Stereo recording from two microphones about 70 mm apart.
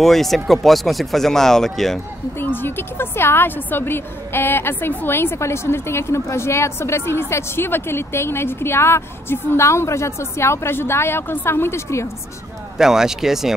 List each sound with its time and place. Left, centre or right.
0.0 s speech: centre
2.4 s a woman's voice: left
12.7 s speech: centre